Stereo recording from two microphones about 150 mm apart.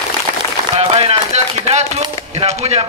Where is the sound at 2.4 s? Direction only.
45° right (ahead or behind).